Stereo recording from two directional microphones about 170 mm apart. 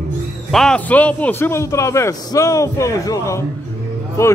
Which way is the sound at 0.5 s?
5° left (ahead or behind).